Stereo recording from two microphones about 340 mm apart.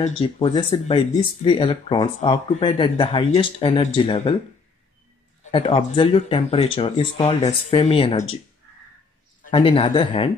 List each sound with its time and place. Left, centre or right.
0.0 s speech: centre
5.4 s speech: centre
9.4 s speech: centre